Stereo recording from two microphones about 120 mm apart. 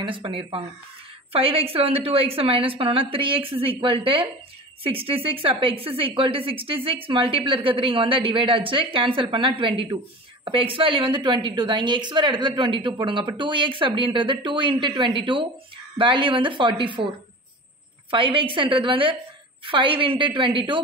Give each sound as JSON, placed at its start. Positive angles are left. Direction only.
{"t": 0.0, "sound": "a woman's voice", "side_deg": -45}
{"t": 18.1, "sound": "a woman's voice", "side_deg": -45}